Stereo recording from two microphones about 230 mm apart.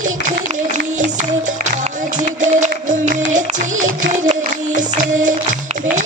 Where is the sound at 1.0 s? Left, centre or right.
Right.